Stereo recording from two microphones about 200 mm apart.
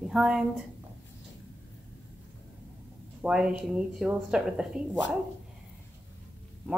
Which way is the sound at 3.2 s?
5° right (ahead or behind).